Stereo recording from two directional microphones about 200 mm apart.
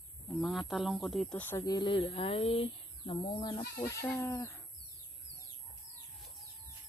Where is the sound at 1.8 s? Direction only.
25° left (ahead or behind).